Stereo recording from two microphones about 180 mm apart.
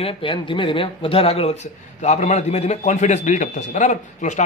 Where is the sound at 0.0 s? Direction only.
30° left (ahead or behind).